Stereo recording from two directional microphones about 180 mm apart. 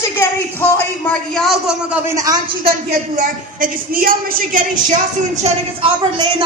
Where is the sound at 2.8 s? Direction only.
45° right (ahead or behind).